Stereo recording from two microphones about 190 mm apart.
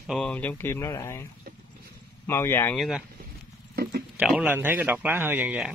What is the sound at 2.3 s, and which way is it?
Speech, 10° left (ahead or behind).